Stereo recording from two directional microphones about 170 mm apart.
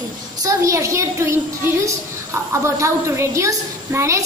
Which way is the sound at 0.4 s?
20° right (ahead or behind).